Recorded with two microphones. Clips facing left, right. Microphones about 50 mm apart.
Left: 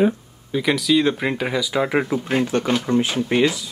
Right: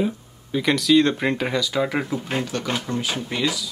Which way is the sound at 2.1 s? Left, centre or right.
Centre.